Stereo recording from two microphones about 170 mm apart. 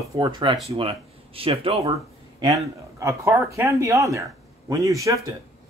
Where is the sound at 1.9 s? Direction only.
20° right (ahead or behind).